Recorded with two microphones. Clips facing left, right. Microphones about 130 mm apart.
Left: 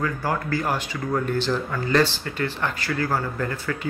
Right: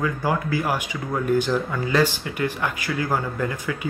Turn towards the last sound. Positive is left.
turn(degrees=-10)  # may be behind; listen again after turning